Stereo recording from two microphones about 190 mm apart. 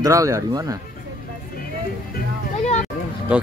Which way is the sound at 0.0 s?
15° right (ahead or behind).